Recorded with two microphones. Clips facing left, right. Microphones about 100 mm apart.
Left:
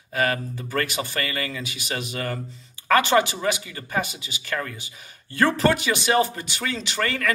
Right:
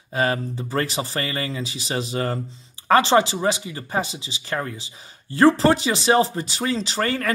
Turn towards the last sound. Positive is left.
turn(degrees=-30)  # may be behind; listen again after turning